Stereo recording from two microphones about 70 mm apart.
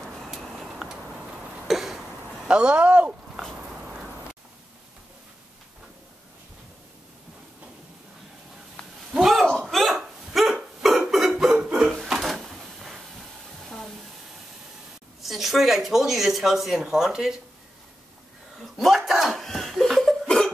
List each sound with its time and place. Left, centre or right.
0.0 s a sound: centre
9.1 s hiccup: centre
11.6 s a sound: centre
12.1 s drawer open or close: centre
15.2 s speech: centre
18.6 s chuckle: centre